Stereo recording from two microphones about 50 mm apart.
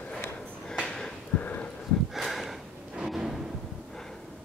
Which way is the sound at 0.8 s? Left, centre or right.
Centre.